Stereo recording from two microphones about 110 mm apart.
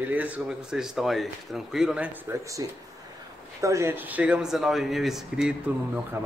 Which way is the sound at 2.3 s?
25° right (ahead or behind).